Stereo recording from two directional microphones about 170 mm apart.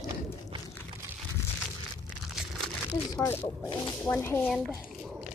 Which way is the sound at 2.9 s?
15° left (ahead or behind).